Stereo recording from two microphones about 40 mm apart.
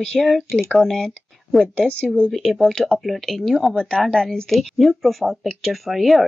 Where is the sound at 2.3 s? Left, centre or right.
Centre.